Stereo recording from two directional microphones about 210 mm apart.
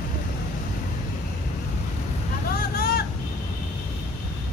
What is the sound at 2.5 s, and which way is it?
Vehicle, 45° left (ahead or behind).